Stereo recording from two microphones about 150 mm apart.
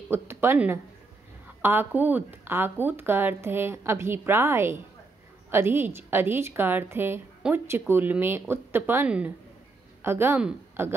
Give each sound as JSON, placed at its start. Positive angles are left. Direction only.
{"t": 0.1, "sound": "speech", "side_deg": -15}